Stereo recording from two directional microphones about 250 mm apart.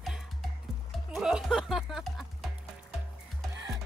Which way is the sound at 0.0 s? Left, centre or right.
Centre.